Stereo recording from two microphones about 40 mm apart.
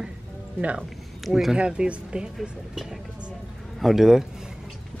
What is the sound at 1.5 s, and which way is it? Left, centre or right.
Speech, right.